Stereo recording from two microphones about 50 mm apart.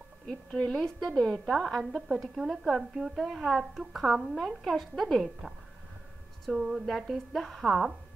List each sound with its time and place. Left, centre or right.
0.7 s a woman's voice: centre
1.4 s a woman's voice: centre
6.5 s a woman's voice: centre